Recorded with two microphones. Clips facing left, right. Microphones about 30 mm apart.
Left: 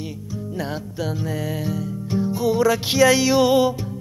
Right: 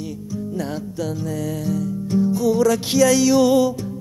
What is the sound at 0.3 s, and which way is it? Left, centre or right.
Music, centre.